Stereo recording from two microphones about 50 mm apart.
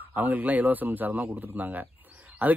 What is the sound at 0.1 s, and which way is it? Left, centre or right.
Speech, right.